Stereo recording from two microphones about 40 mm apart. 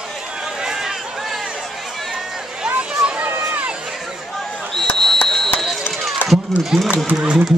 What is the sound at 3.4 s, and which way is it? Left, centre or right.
Run, right.